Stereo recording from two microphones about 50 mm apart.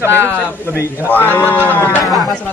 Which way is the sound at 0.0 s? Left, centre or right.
Right.